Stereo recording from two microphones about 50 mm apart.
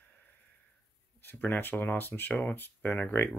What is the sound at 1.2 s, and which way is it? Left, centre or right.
Speech, left.